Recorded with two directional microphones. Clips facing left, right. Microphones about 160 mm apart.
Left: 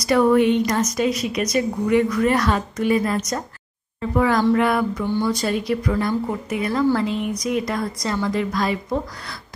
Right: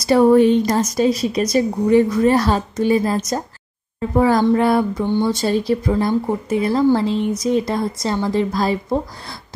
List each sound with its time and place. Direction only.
0.0 s a woman's voice: 30° right (ahead or behind)